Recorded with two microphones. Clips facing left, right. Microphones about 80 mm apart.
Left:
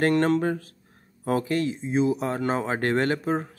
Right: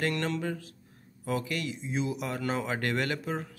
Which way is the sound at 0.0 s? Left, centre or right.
Left.